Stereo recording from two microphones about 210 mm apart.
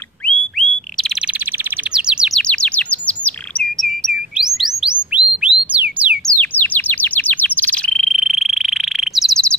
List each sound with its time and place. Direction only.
0.3 s whistle: centre (ahead or behind)
2.0 s chirp: 5° right (ahead or behind)
5.1 s bird: 5° right (ahead or behind)
6.3 s bird: 10° left (ahead or behind)